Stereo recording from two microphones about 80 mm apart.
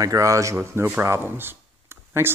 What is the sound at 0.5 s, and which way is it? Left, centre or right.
Speech, right.